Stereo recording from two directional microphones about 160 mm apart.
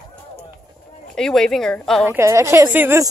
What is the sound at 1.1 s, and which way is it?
Speech, 5° left (ahead or behind).